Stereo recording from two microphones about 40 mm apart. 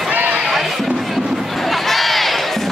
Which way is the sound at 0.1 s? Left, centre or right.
Right.